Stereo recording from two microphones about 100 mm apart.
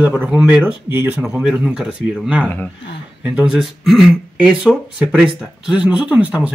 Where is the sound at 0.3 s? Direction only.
10° right (ahead or behind).